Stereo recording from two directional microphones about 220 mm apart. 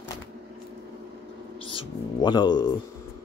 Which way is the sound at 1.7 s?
20° left (ahead or behind).